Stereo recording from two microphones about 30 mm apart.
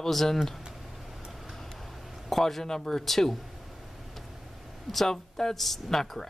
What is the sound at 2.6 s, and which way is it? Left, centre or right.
Speech, centre.